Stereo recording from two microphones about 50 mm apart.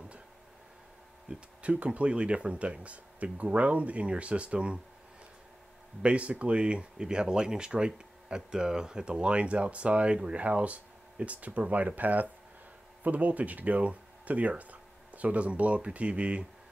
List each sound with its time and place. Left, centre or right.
1.3 s speech: right
6.0 s speech: right